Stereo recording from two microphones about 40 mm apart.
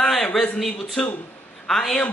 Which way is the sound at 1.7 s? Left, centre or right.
Centre.